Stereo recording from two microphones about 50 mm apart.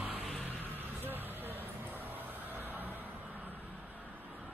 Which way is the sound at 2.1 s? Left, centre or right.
Right.